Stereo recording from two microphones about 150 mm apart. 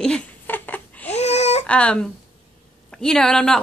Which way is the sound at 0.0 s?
5° left (ahead or behind).